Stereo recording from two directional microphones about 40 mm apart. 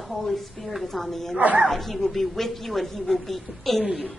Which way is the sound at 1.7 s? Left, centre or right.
Centre.